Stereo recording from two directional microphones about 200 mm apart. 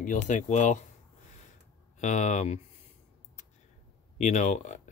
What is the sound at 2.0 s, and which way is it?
Speech, 35° left (ahead or behind).